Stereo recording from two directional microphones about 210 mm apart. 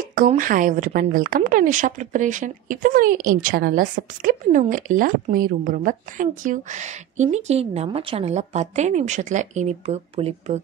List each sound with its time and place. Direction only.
0.0 s a woman's voice: 40° right (ahead or behind)